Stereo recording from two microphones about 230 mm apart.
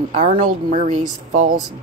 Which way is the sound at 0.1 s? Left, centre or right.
Right.